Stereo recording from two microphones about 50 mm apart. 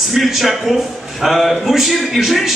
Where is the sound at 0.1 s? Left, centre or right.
Centre.